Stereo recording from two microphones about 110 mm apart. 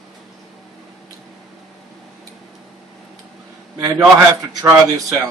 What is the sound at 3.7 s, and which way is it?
A man's voice, 35° right (ahead or behind).